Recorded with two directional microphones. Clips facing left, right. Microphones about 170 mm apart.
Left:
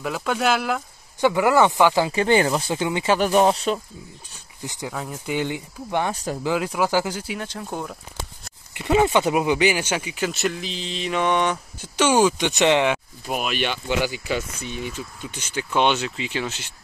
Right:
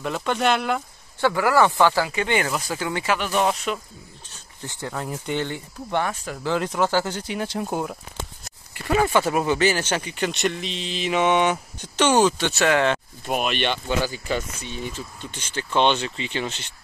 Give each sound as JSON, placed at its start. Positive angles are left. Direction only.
{"t": 0.0, "sound": "speech", "side_deg": 5}
{"t": 1.2, "sound": "speech", "side_deg": 20}
{"t": 2.0, "sound": "speech", "side_deg": 35}
{"t": 3.2, "sound": "speech", "side_deg": 40}
{"t": 4.6, "sound": "speech", "side_deg": 15}
{"t": 4.9, "sound": "speech", "side_deg": 0}
{"t": 6.1, "sound": "speech", "side_deg": 35}
{"t": 6.4, "sound": "speech", "side_deg": 10}
{"t": 7.7, "sound": "speech", "side_deg": -10}
{"t": 8.7, "sound": "speech", "side_deg": 20}
{"t": 11.8, "sound": "speech", "side_deg": 10}
{"t": 12.9, "sound": "speech", "side_deg": 0}